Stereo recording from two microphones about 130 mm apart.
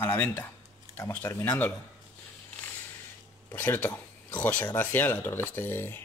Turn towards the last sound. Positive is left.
turn(degrees=15)  # may be behind; listen again after turning